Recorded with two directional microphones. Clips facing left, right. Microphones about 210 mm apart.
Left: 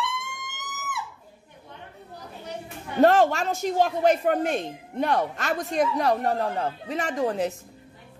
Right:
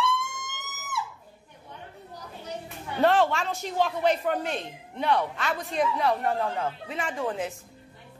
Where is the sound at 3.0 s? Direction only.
45° left (ahead or behind).